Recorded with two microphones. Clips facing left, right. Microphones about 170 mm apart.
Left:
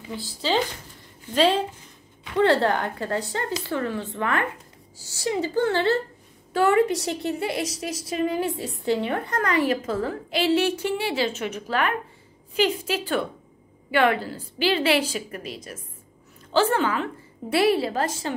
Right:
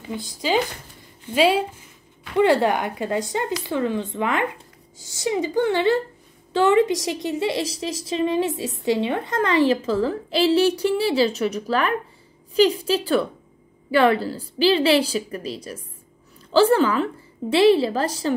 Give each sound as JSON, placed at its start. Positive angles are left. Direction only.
{"t": 0.1, "sound": "a woman's voice", "side_deg": -20}